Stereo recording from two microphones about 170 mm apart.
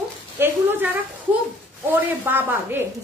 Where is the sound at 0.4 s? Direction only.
10° right (ahead or behind).